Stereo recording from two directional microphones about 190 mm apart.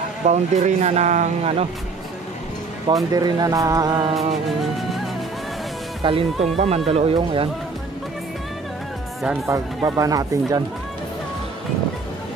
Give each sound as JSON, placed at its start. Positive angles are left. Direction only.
{"t": 0.3, "sound": "speech", "side_deg": -35}
{"t": 2.9, "sound": "speech", "side_deg": -20}
{"t": 6.0, "sound": "speech", "side_deg": -30}
{"t": 9.5, "sound": "speech", "side_deg": -15}